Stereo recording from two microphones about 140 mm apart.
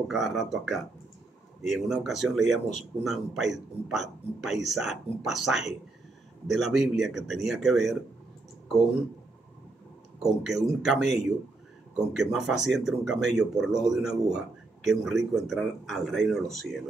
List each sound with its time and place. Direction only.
0.1 s speech: centre (ahead or behind)
10.2 s speech: centre (ahead or behind)